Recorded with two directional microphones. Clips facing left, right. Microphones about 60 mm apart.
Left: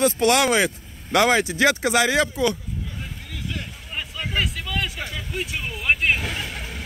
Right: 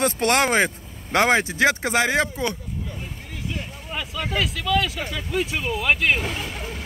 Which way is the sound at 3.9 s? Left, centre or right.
Right.